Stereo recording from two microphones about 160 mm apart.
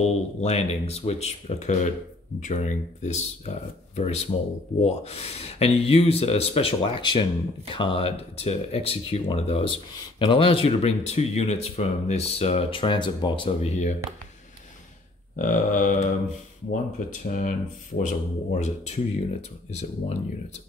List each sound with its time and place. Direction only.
0.0 s speech: 40° left (ahead or behind)
13.6 s speech: 45° left (ahead or behind)
15.3 s speech: 55° left (ahead or behind)